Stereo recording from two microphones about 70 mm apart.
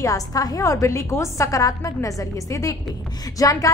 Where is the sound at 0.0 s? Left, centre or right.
Left.